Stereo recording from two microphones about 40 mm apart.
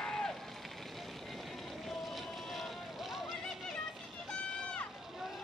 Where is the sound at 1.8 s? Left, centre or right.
Centre.